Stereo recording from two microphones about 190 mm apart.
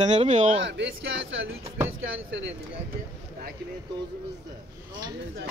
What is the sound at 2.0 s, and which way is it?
Speech, 90° right.